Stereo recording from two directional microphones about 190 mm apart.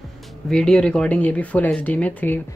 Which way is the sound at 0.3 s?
5° left (ahead or behind).